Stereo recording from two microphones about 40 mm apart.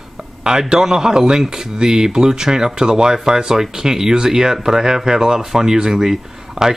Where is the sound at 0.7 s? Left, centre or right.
Centre.